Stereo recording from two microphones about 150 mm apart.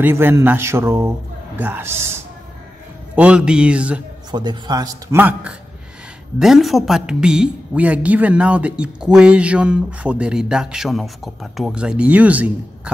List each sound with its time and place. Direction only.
0.0 s a woman's voice: 15° right (ahead or behind)
3.2 s a woman's voice: 5° right (ahead or behind)
4.3 s speech: 30° right (ahead or behind)
6.4 s a woman's voice: centre (ahead or behind)